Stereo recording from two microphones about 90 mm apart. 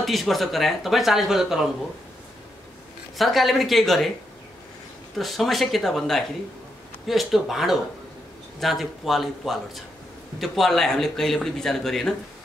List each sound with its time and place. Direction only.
0.0 s speech: centre (ahead or behind)
3.2 s speech: centre (ahead or behind)
5.1 s speech: centre (ahead or behind)